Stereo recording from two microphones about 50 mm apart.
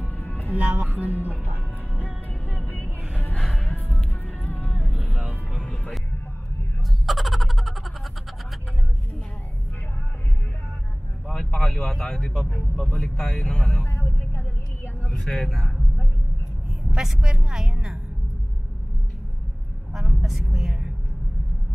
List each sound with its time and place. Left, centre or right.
0.1 s music: left
0.5 s speech: right
0.8 s speech: right
3.3 s music: centre
4.4 s vehicle: left
7.1 s a sound: centre
11.2 s speech: centre
13.8 s a sound: left
15.0 s speech: centre
16.9 s a woman's voice: centre
19.9 s a woman's voice: centre